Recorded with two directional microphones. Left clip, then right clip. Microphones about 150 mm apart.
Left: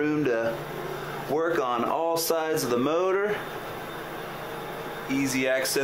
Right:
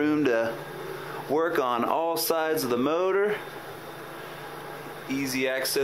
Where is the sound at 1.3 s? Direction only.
45° right (ahead or behind).